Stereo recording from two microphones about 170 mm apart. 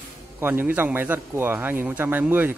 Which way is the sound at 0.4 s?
10° right (ahead or behind).